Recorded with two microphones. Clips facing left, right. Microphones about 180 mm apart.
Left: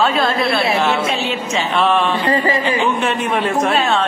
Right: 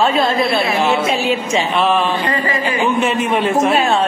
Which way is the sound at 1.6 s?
Centre (ahead or behind).